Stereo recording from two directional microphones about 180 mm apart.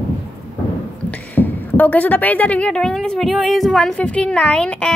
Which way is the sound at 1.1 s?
10° left (ahead or behind).